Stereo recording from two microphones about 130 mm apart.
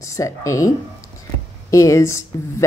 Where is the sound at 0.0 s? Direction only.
25° left (ahead or behind).